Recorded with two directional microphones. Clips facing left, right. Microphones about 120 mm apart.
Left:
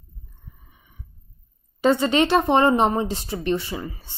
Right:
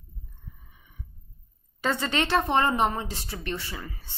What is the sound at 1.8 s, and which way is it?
Speech, 20° left (ahead or behind).